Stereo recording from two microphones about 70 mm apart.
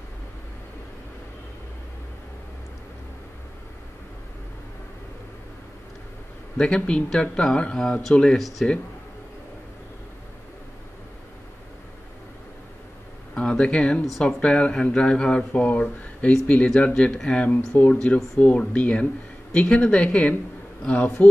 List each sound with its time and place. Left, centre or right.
6.6 s speech: centre
13.3 s speech: centre